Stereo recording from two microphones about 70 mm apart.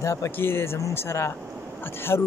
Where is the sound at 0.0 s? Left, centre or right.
Left.